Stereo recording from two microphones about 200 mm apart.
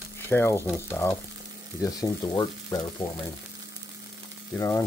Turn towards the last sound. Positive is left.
turn(degrees=15)  # may be behind; listen again after turning